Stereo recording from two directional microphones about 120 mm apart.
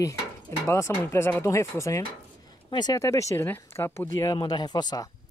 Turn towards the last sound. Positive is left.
turn(degrees=35)  # may be behind; listen again after turning